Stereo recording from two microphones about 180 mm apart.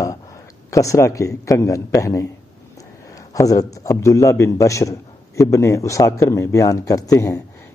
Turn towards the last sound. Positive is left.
turn(degrees=20)  # may be behind; listen again after turning